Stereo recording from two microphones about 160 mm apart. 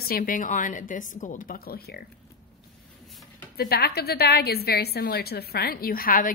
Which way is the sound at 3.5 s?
80° left.